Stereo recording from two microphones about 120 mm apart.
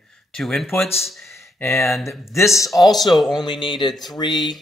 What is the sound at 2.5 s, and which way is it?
Speech, centre (ahead or behind).